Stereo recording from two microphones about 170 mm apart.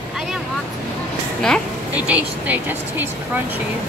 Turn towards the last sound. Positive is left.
turn(degrees=-10)  # may be behind; listen again after turning